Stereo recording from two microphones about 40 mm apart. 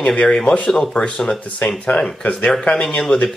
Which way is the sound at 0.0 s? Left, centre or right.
Left.